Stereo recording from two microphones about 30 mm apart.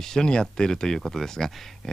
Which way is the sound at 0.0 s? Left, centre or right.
Centre.